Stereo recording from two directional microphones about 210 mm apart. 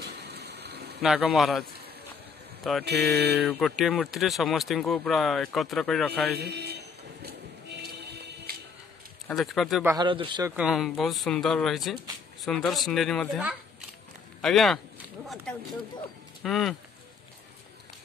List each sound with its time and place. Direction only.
0.0 s a sound: 50° right (ahead or behind)
1.0 s speech: centre (ahead or behind)
6.3 s a man's voice: 50° right (ahead or behind)
7.2 s music: 50° right (ahead or behind)
9.3 s speech: centre (ahead or behind)
9.9 s speech: 25° right (ahead or behind)
10.5 s speech: 5° right (ahead or behind)
16.4 s speech: centre (ahead or behind)